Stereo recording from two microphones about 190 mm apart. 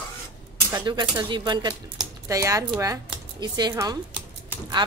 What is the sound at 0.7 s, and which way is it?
Speech, 20° right (ahead or behind).